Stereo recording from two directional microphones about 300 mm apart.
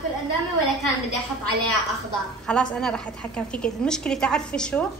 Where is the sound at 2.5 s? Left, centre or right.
Centre.